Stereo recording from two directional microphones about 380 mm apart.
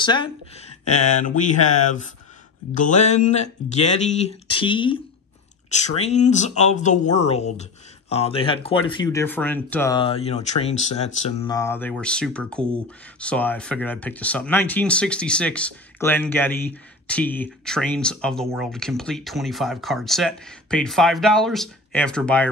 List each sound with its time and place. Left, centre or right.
0.0 s speech: centre